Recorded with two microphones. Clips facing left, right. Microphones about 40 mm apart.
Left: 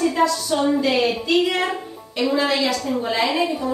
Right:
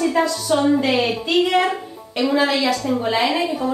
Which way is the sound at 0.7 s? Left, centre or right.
Right.